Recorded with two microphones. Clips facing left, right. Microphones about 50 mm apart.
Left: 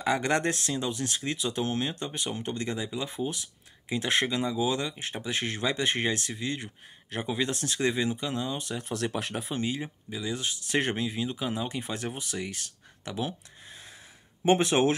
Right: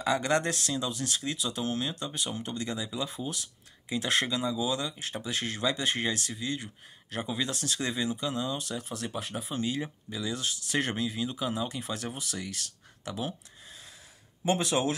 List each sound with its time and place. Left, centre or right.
0.0 s speech: left
8.8 s speech: left
9.3 s speech: left
10.2 s speech: left
14.4 s speech: left